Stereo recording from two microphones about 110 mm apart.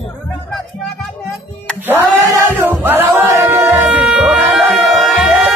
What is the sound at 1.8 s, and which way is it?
Chant, 20° right (ahead or behind).